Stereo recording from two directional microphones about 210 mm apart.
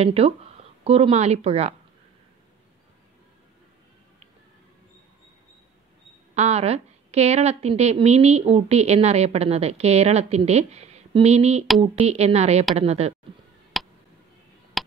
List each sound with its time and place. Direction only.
0.0 s speech: 30° right (ahead or behind)
6.3 s a woman's voice: 30° right (ahead or behind)
13.7 s a sound: centre (ahead or behind)